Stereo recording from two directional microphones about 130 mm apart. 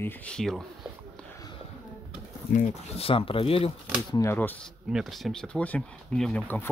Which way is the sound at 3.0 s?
45° left (ahead or behind).